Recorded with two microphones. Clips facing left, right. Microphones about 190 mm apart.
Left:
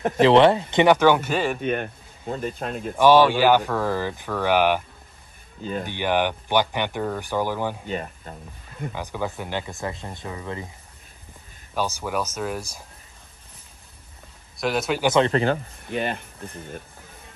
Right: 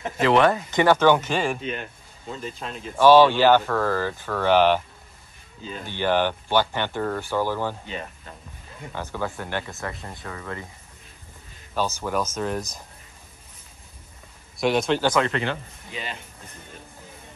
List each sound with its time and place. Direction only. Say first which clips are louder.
0.2 s speech: left 4 dB; 30° left (ahead or behind)
0.8 s speech: even; 10° left (ahead or behind)
1.6 s speech: left 6 dB; 55° left (ahead or behind)
3.0 s speech: right 1 dB; 15° left (ahead or behind)
5.6 s speech: left 7 dB; 50° left (ahead or behind)
5.9 s speech: right 2 dB; 15° left (ahead or behind)
7.8 s speech: left 5 dB; 45° left (ahead or behind)
8.9 s speech: even; 15° left (ahead or behind)
11.7 s speech: right 1 dB; 10° left (ahead or behind)
14.6 s speech: right 2 dB; 5° left (ahead or behind)
15.1 s speech: left 4 dB; 35° left (ahead or behind)
15.9 s speech: left 9 dB; 55° left (ahead or behind)